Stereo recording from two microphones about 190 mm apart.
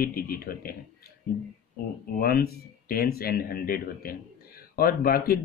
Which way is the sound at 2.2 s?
50° left (ahead or behind).